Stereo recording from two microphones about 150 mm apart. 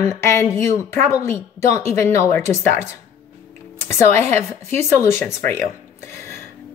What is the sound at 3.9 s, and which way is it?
Speech, 15° left (ahead or behind).